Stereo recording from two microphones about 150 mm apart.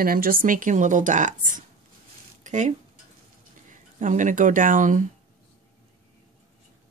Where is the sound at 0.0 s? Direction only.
75° right (ahead or behind); by 1.6 s 60° right (ahead or behind).